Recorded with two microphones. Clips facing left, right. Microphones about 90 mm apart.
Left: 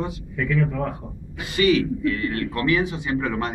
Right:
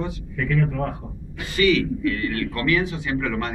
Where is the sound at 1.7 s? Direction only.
60° right (ahead or behind).